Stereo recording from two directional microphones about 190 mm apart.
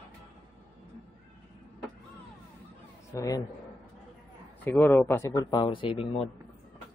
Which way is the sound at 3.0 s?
15° left (ahead or behind).